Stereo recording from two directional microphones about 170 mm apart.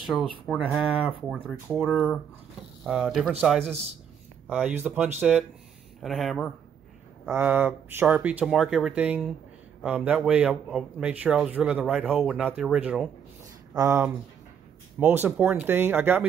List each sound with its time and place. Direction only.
0.5 s speech: centre (ahead or behind)
7.2 s speech: 10° right (ahead or behind)
13.7 s speech: 15° right (ahead or behind)